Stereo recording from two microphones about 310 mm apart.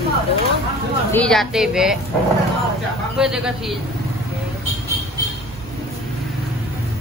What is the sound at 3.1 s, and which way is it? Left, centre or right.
Speech, centre.